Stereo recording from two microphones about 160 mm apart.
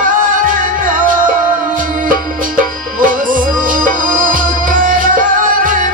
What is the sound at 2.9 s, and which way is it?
Music, 60° right (ahead or behind).